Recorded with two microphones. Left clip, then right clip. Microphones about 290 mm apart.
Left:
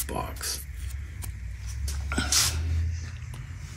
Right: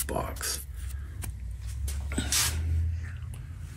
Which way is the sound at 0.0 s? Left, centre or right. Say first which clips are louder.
Even; centre.